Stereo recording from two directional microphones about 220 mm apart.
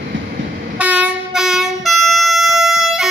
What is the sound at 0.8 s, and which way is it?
Train, 5° right (ahead or behind).